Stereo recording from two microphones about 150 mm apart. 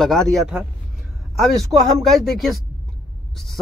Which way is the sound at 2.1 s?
Centre (ahead or behind).